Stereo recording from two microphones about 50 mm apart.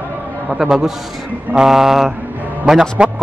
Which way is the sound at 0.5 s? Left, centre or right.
Centre.